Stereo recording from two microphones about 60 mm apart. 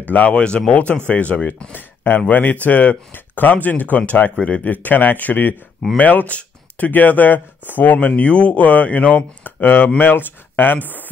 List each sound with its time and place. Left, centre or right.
0.1 s speech: left
8.1 s speech: centre